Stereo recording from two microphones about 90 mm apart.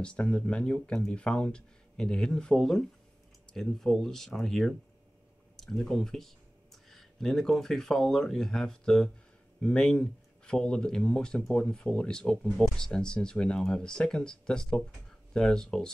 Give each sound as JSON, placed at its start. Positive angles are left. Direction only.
{"t": 0.0, "sound": "speech", "side_deg": 10}